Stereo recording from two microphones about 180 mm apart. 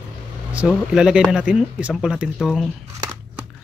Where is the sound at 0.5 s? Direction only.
5° right (ahead or behind).